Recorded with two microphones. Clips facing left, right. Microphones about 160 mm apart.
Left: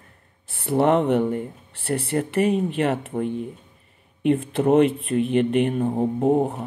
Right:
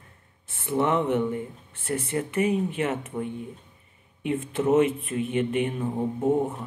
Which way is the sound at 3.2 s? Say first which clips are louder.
Left 6 dB; 85° left.